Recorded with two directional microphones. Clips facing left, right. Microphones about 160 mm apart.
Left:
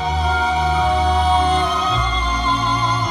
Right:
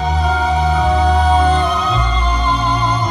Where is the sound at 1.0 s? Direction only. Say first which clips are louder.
Right 3 dB; 45° right (ahead or behind).